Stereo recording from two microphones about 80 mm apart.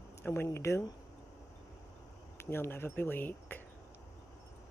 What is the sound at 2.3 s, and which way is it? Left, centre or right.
Speech, left.